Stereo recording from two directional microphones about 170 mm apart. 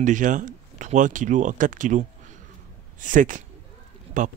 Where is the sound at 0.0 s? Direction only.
50° right (ahead or behind).